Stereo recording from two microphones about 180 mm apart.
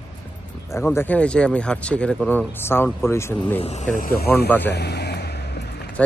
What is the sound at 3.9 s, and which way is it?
Speech, 50° left (ahead or behind).